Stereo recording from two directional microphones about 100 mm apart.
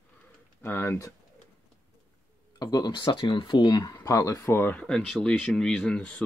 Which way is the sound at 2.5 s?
40° left (ahead or behind).